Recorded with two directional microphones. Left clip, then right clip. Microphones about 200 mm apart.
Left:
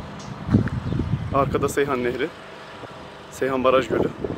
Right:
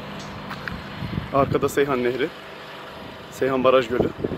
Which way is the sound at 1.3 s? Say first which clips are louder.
Right 1 dB; 5° right (ahead or behind).